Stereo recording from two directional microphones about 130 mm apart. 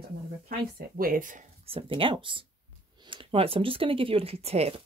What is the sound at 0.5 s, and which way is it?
Speech, 90° right.